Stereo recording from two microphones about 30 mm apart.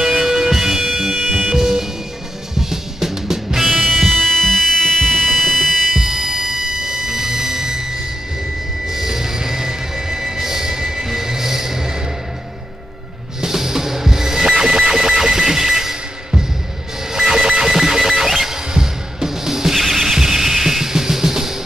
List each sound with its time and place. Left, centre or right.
0.0 s music: centre
3.8 s music: centre
5.9 s music: centre
8.8 s vehicle: centre
13.4 s music: centre
17.1 s music: centre